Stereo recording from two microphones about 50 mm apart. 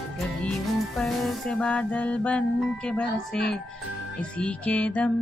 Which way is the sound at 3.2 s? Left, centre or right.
Centre.